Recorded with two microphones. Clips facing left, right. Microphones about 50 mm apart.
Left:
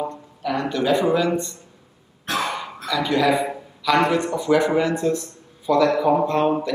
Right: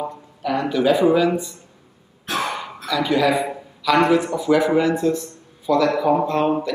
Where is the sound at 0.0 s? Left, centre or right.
Centre.